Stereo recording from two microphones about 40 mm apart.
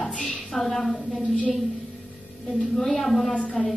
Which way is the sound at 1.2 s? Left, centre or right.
Left.